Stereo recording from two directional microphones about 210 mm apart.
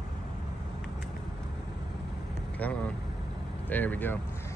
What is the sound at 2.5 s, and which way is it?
Vehicle, 5° left (ahead or behind).